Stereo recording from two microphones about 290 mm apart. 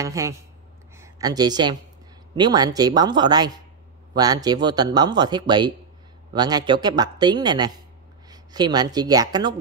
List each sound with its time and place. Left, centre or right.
0.0 s speech: centre